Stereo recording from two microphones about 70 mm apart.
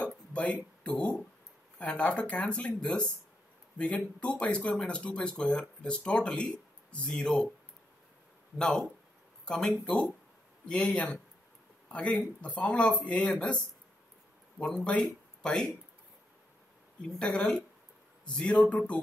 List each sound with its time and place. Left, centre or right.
0.0 s a sound: centre
1.8 s speech: centre
8.5 s speech: centre
14.6 s speech: centre
17.2 s speech: centre